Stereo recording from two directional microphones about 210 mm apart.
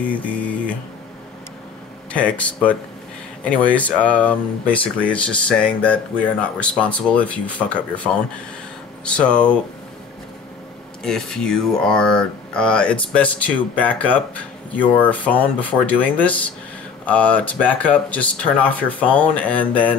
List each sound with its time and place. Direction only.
0.0 s speech: 5° left (ahead or behind)
2.1 s speech: 5° left (ahead or behind)
11.1 s speech: 5° left (ahead or behind)